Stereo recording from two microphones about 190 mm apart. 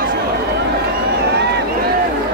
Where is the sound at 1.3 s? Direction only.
60° right (ahead or behind).